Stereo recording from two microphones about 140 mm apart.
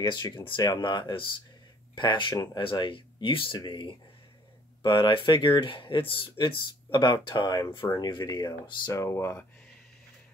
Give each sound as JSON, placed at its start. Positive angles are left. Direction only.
{"t": 0.0, "sound": "speech", "side_deg": 35}
{"t": 8.9, "sound": "speech", "side_deg": 20}